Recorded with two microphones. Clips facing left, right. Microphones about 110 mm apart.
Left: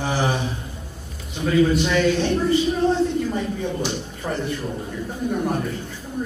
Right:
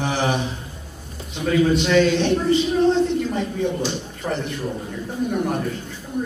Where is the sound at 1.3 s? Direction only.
20° right (ahead or behind).